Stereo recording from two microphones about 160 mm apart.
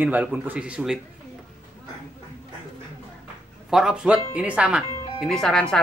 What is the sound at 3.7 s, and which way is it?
Speech, 5° right (ahead or behind).